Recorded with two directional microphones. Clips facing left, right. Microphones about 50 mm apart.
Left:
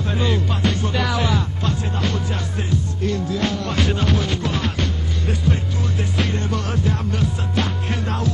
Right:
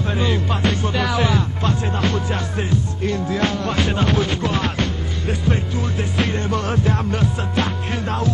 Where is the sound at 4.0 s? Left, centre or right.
Right.